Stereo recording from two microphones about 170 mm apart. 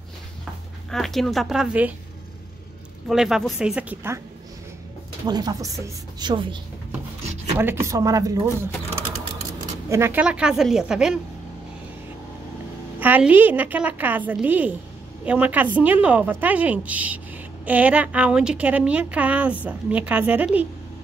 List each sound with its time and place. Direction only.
0.8 s a woman's voice: centre (ahead or behind)
3.1 s a woman's voice: 5° right (ahead or behind)
5.2 s a woman's voice: 25° right (ahead or behind)
7.5 s a woman's voice: 15° right (ahead or behind)
9.8 s a woman's voice: 15° right (ahead or behind)
13.0 s a woman's voice: 10° right (ahead or behind)